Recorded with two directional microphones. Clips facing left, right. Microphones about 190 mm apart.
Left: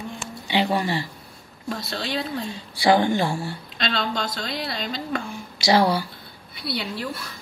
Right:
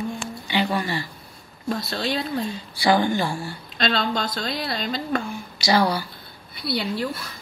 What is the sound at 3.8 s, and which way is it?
A woman's voice, 40° right (ahead or behind).